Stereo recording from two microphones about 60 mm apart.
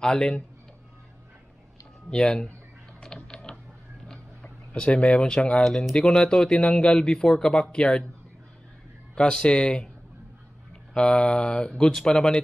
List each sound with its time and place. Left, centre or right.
0.0 s speech: centre
2.0 s speech: centre
3.3 s a sound: centre
4.4 s speech: centre
9.1 s speech: centre
10.9 s speech: centre